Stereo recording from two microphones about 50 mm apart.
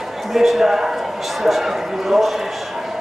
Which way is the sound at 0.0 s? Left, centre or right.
Centre.